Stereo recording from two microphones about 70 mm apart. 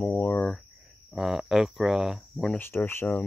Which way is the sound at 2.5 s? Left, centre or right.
Left.